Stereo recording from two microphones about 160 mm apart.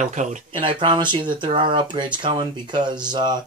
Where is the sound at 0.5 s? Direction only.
30° right (ahead or behind).